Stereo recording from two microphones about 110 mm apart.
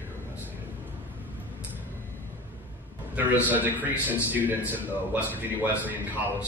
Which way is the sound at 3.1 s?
15° right (ahead or behind).